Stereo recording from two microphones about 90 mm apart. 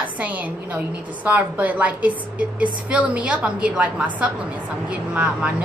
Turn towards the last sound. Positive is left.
turn(degrees=-10)  # may be behind; listen again after turning